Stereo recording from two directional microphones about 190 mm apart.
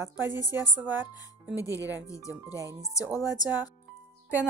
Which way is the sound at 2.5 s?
15° right (ahead or behind).